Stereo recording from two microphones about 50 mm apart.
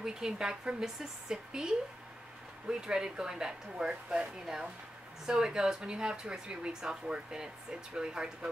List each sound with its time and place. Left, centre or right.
0.0 s speech: centre
2.7 s speech: centre